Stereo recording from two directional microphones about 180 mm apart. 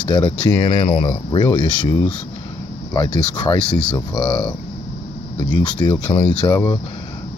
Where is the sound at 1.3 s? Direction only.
25° left (ahead or behind).